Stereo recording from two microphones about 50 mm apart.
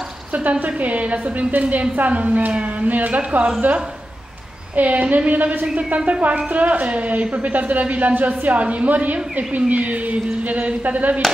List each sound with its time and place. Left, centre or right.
0.3 s a woman's voice: right
4.7 s a woman's voice: right